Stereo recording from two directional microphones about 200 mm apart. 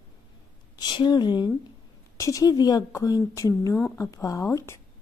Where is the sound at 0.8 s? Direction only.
20° left (ahead or behind).